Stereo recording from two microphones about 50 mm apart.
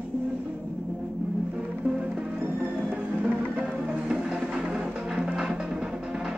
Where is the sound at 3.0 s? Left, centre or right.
Right.